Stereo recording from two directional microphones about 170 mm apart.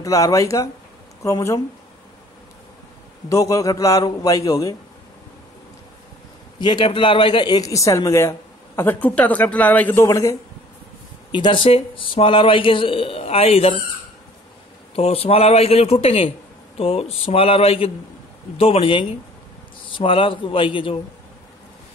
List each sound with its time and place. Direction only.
0.0 s a man's voice: 20° left (ahead or behind)
3.3 s a man's voice: 20° left (ahead or behind)
6.6 s speech: 25° left (ahead or behind)
11.3 s a man's voice: 30° left (ahead or behind)
15.0 s a man's voice: 35° left (ahead or behind)